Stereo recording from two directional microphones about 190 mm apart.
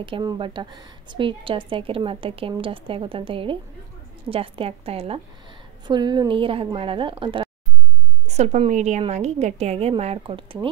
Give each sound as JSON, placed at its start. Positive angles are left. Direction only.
{"t": 0.0, "sound": "a woman's voice", "side_deg": -25}